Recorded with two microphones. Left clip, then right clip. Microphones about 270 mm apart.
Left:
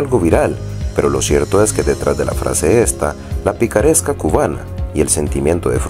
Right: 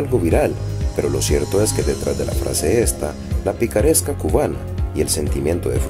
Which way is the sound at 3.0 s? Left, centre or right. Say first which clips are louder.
Left 5 dB; centre.